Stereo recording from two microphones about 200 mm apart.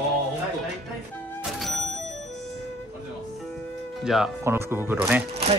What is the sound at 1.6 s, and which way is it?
Music, centre (ahead or behind).